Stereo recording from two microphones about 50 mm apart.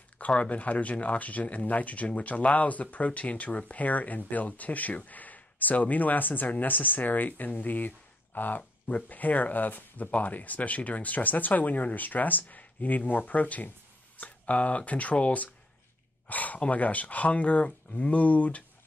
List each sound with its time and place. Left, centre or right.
0.3 s speech: left